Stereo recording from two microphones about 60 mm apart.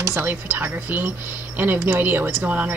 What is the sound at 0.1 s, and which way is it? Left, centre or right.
Speech, right.